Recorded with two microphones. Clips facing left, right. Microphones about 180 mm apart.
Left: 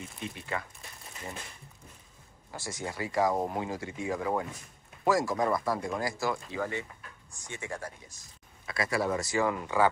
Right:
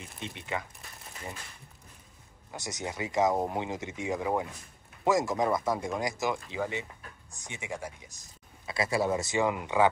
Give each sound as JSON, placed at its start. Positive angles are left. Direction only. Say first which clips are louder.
{"t": 0.2, "sound": "speech", "louder": "right 1 dB", "side_deg": -20}
{"t": 2.5, "sound": "speech", "louder": "even", "side_deg": -20}